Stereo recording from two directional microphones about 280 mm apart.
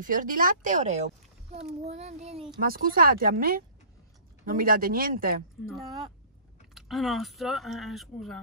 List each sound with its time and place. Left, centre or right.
0.0 s speech: right
6.7 s speech: centre